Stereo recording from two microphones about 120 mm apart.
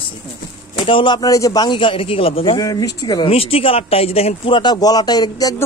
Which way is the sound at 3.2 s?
55° left (ahead or behind).